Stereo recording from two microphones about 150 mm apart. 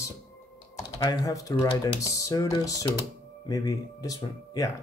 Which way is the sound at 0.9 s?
25° left (ahead or behind).